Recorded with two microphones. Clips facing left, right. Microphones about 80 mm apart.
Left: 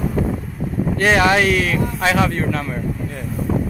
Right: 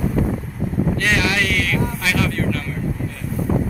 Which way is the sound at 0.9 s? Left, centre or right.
Left.